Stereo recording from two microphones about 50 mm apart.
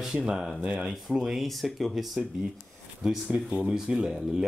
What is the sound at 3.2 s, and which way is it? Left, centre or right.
Speech, right.